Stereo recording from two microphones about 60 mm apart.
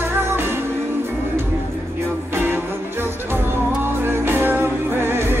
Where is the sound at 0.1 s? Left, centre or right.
Right.